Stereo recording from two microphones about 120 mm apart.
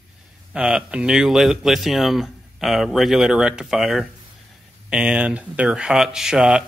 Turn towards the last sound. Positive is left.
turn(degrees=-5)  # may be behind; listen again after turning